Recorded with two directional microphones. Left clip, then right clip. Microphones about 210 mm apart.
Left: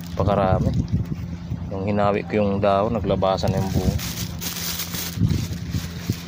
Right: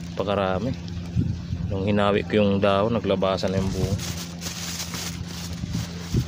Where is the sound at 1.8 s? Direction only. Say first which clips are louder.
Left 1 dB; 20° right (ahead or behind).